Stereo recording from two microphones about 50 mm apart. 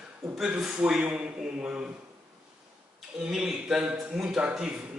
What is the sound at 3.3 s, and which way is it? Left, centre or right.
A man's voice, centre.